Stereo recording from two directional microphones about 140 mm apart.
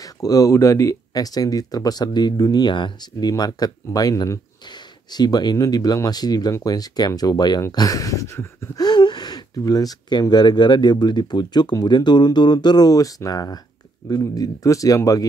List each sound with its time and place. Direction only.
0.0 s speech: 25° left (ahead or behind)
8.8 s speech: 30° left (ahead or behind)